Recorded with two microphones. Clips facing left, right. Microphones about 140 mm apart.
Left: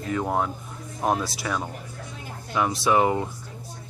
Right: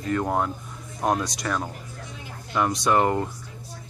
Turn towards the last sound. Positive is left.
turn(degrees=5)  # may be behind; listen again after turning